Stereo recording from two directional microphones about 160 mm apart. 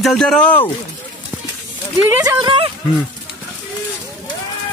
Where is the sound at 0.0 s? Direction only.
5° left (ahead or behind).